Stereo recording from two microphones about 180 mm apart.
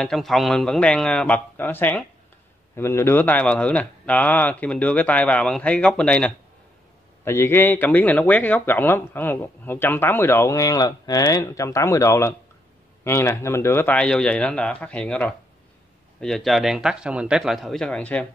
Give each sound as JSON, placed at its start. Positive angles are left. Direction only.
{"t": 0.0, "sound": "a man's voice", "side_deg": 0}